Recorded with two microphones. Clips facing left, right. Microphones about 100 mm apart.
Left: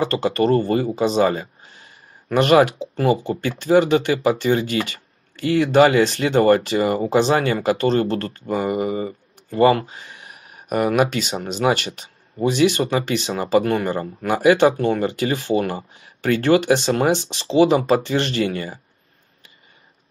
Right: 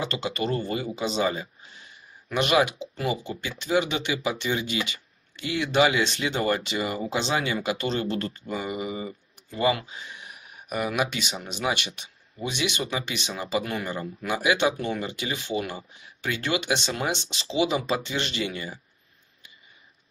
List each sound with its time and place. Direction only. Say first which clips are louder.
0.0 s speech: left 10 dB; 45° left (ahead or behind)